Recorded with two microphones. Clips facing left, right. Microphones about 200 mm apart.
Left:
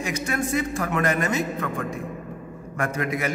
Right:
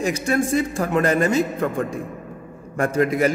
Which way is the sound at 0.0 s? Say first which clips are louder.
Right 6 dB; 30° right (ahead or behind).